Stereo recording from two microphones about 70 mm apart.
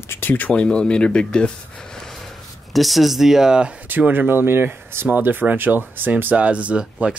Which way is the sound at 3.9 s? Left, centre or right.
Right.